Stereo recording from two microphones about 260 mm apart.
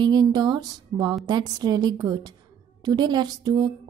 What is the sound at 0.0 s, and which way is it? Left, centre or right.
A woman's voice, centre.